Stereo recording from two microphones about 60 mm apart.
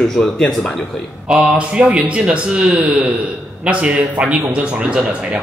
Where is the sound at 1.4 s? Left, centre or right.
Centre.